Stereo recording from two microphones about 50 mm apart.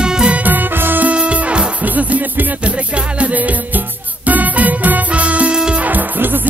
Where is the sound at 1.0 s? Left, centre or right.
Right.